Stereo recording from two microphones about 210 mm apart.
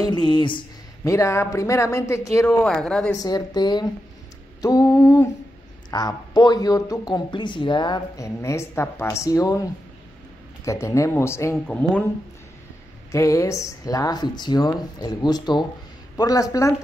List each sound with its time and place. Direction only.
0.0 s speech: 20° left (ahead or behind); by 3.1 s 5° left (ahead or behind)
3.2 s speech: 20° left (ahead or behind)
13.1 s speech: 15° left (ahead or behind)